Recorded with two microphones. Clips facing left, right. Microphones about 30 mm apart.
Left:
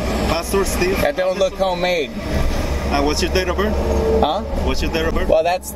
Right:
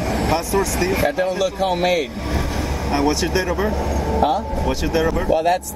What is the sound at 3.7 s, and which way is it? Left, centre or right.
Speech, left.